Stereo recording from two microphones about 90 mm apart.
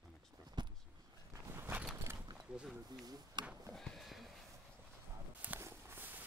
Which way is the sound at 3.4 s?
55° right (ahead or behind).